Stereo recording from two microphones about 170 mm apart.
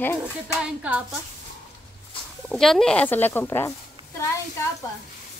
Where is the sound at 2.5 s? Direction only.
Centre (ahead or behind).